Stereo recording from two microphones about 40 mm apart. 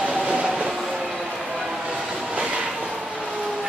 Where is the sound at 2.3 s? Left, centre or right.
Right.